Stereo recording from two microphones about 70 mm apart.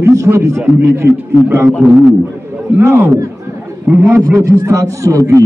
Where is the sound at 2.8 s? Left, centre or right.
Right.